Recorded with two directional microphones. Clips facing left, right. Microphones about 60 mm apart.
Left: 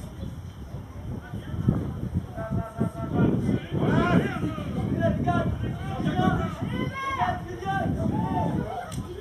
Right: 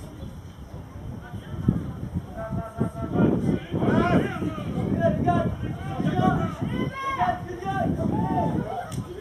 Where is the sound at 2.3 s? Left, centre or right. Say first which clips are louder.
Right 2 dB; centre.